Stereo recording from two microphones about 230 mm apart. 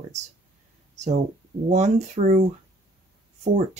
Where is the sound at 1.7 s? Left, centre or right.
Right.